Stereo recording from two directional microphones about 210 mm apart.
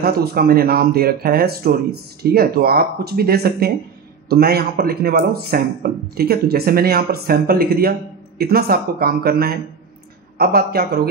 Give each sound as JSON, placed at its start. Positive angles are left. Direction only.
{"t": 0.0, "sound": "speech", "side_deg": -45}